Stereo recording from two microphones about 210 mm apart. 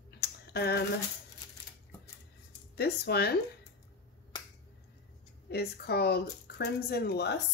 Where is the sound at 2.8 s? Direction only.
50° left (ahead or behind).